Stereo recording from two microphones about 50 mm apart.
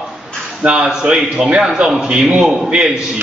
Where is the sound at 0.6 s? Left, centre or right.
Right.